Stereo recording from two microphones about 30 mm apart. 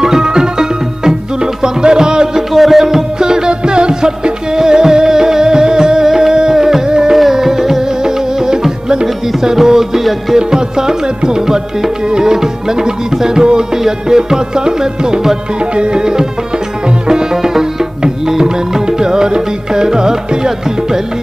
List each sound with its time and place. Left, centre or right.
0.0 s music: right
2.5 s music: centre
3.2 s music: right
15.6 s music: right
16.0 s music: right